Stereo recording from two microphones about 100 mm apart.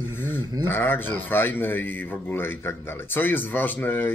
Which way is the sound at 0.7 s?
20° left (ahead or behind).